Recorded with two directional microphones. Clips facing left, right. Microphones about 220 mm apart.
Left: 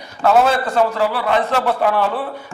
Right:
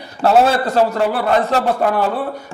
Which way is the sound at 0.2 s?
35° right (ahead or behind).